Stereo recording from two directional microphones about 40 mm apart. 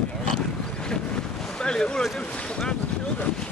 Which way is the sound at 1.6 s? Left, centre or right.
Centre.